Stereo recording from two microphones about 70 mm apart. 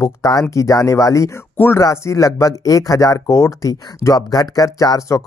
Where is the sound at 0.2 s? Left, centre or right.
Left.